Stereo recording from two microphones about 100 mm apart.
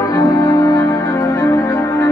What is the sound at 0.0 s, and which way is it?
Music, 35° left (ahead or behind).